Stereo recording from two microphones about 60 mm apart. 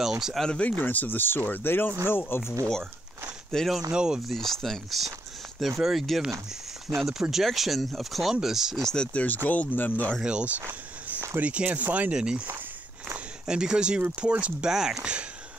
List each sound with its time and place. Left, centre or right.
0.0 s speech: centre
0.4 s speech: centre
0.7 s speech: left
3.5 s speech: centre
3.9 s speech: centre
4.3 s speech: centre
8.8 s speech: centre
9.2 s speech: left
10.2 s speech: right
12.1 s speech: centre
13.5 s speech: centre
14.7 s speech: centre